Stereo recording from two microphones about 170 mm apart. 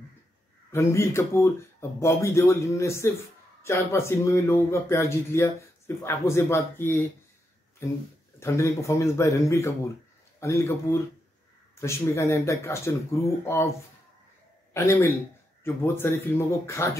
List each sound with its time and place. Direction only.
0.7 s speech: 15° left (ahead or behind)
14.7 s speech: 15° left (ahead or behind)